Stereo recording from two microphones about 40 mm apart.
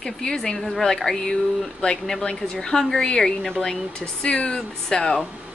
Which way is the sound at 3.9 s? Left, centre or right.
Left.